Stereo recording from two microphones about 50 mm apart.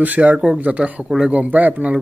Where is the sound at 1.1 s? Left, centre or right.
Centre.